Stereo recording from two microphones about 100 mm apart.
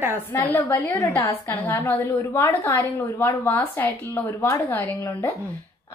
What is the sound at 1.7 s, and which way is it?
A woman's voice, 30° left (ahead or behind).